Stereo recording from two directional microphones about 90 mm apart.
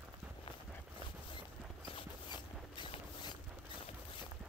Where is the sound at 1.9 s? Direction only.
60° left (ahead or behind).